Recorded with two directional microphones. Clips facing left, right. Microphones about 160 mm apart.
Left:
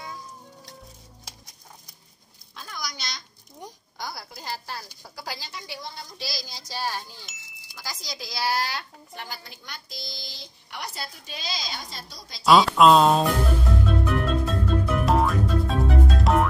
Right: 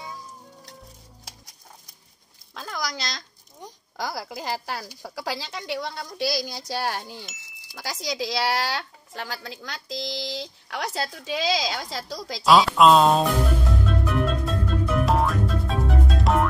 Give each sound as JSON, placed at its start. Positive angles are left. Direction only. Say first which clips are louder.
{"t": 2.5, "sound": "a sound", "louder": "right 6 dB", "side_deg": -90}
{"t": 3.9, "sound": "a woman's voice", "louder": "right 7 dB", "side_deg": -90}
{"t": 12.4, "sound": "speech", "louder": "even", "side_deg": 0}
{"t": 13.8, "sound": "music", "louder": "right 1 dB", "side_deg": 0}